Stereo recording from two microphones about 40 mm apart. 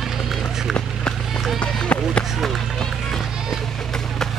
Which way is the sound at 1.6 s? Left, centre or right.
Left.